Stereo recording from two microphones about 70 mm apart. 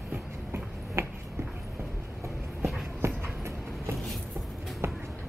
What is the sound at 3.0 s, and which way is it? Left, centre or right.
Train, right.